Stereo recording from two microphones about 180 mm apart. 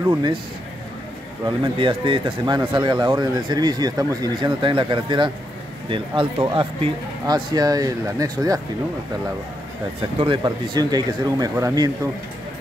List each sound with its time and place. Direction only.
0.1 s speech: 25° right (ahead or behind)
1.4 s speech: 25° right (ahead or behind)
10.1 s speech: 25° right (ahead or behind)